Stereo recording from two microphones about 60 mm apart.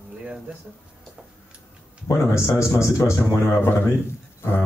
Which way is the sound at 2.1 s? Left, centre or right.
Left.